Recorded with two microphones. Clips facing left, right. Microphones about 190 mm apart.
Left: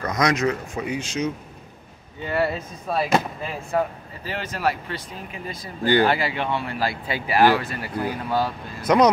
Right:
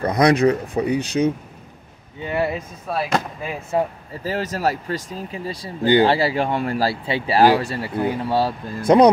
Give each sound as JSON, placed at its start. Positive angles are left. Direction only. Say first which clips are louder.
{"t": 0.0, "sound": "speech", "louder": "right 6 dB", "side_deg": -30}
{"t": 2.2, "sound": "speech", "louder": "right 1 dB", "side_deg": -15}
{"t": 2.9, "sound": "speech", "louder": "left 1 dB", "side_deg": 0}
{"t": 4.2, "sound": "speech", "louder": "right 4 dB", "side_deg": -40}
{"t": 5.9, "sound": "speech", "louder": "right 3 dB", "side_deg": -20}
{"t": 6.1, "sound": "speech", "louder": "right 5 dB", "side_deg": -35}